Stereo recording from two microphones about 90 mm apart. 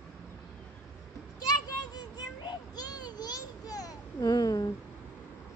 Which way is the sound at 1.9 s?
55° left (ahead or behind).